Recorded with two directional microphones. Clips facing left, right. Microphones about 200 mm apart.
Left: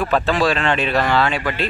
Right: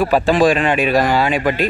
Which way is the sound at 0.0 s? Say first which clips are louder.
Right 5 dB; 10° right (ahead or behind).